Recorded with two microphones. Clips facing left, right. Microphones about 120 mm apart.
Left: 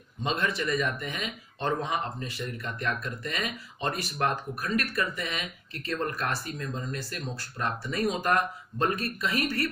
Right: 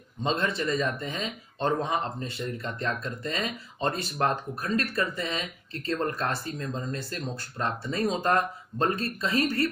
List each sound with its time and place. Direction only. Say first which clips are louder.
0.2 s speech: right 2 dB; 25° right (ahead or behind)